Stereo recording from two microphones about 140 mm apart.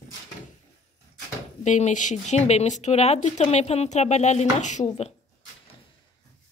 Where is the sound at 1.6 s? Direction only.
60° left (ahead or behind).